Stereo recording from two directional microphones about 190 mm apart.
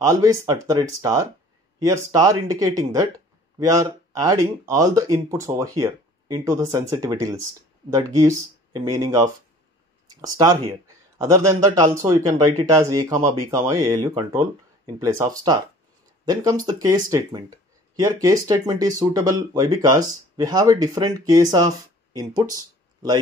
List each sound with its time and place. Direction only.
0.0 s speech: 15° right (ahead or behind)
16.6 s speech: 20° right (ahead or behind)